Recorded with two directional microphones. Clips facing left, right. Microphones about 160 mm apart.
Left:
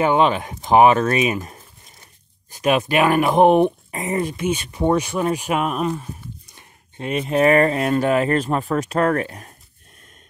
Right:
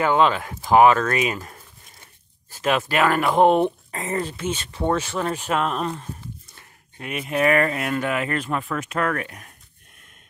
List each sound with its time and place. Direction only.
0.0 s speech: 20° left (ahead or behind)
7.0 s speech: 30° left (ahead or behind)